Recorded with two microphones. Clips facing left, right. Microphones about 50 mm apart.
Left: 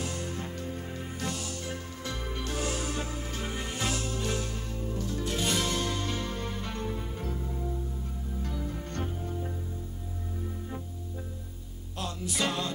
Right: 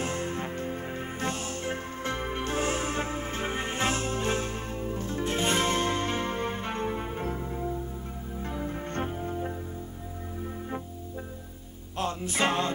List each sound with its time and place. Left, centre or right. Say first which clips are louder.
0.0 s music: right 4 dB; right
12.0 s music: right 4 dB; right